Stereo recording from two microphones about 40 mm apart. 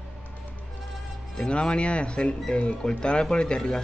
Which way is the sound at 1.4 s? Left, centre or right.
Left.